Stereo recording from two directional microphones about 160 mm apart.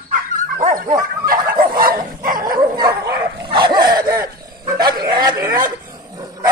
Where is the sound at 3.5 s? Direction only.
30° right (ahead or behind).